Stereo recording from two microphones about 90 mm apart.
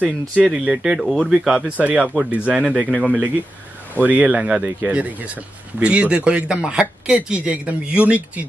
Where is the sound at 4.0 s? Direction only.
15° right (ahead or behind).